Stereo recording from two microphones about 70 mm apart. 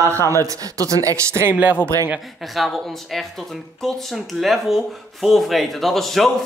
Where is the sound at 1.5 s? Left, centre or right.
Right.